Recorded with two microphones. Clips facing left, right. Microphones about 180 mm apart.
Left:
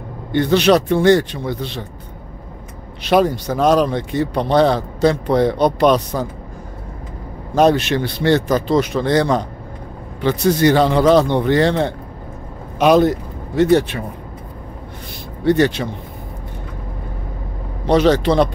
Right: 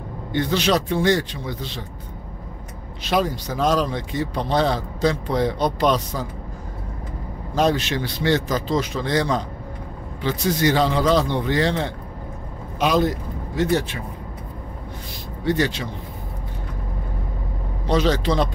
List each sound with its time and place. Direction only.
0.3 s speech: 65° left (ahead or behind)
3.0 s speech: 60° left (ahead or behind)
7.5 s speech: 60° left (ahead or behind)
15.4 s speech: 60° left (ahead or behind)
17.8 s speech: 65° left (ahead or behind)